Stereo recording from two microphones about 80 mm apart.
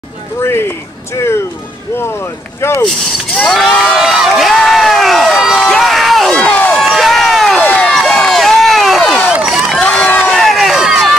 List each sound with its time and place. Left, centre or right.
0.4 s speech: left
2.0 s speech: left
2.9 s speech: centre
3.6 s crowd: centre
5.7 s run: centre
6.3 s crowd: centre
6.8 s run: centre
7.6 s run: centre
9.3 s run: centre
9.8 s a sound: centre
10.3 s crowd: centre